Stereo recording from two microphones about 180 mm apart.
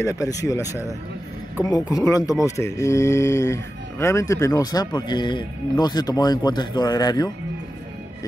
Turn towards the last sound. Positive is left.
turn(degrees=20)  # may be behind; listen again after turning